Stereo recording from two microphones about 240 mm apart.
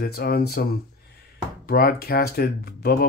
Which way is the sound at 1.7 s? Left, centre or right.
Left.